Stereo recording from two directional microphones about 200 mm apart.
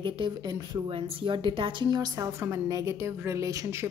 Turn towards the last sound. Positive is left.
turn(degrees=-15)  # may be behind; listen again after turning